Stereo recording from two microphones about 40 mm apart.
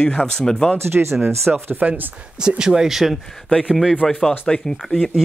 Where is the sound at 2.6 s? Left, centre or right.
Centre.